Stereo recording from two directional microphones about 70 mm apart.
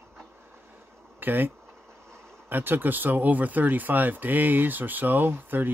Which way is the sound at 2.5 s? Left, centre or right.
Right.